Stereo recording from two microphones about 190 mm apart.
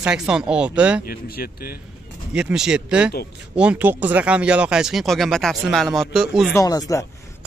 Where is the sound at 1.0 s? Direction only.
50° left (ahead or behind).